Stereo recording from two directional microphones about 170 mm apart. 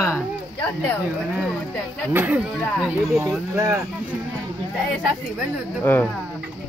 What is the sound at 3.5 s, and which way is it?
Speech, 20° right (ahead or behind).